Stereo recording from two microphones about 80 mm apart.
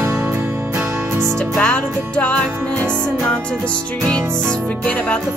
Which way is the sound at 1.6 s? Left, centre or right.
Centre.